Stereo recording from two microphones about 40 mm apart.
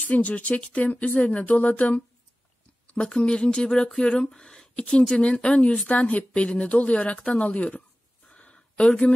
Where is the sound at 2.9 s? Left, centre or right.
Left.